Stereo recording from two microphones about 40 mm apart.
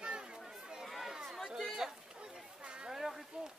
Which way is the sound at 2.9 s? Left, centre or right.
Centre.